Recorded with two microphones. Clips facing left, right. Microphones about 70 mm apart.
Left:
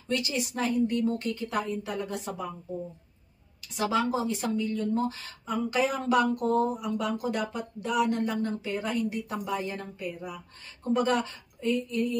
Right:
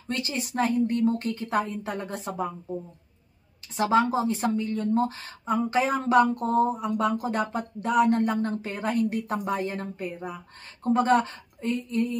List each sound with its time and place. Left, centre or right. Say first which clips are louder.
0.1 s speech: even; right
3.7 s speech: right 5 dB; right